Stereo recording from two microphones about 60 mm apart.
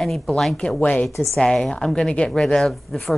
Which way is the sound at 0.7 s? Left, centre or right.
Left.